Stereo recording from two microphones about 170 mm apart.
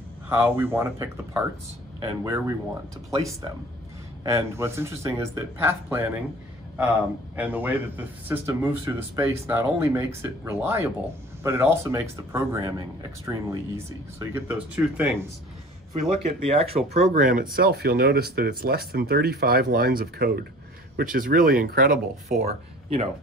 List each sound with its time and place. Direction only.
0.3 s speech: 10° right (ahead or behind)
4.2 s speech: 15° right (ahead or behind)
7.3 s speech: 10° right (ahead or behind)
15.9 s speech: 35° right (ahead or behind); by 22.0 s 55° right (ahead or behind)
22.4 s speech: 40° right (ahead or behind)